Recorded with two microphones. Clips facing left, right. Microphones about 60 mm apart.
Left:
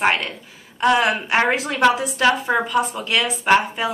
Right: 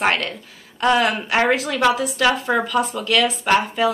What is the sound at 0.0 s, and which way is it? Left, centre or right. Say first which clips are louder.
A woman's voice: even; centre.